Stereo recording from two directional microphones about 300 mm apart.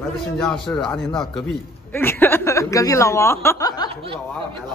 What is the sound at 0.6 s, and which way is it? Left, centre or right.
A man's voice, centre.